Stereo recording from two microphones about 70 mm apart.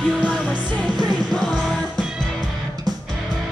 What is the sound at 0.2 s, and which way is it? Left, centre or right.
Music, centre.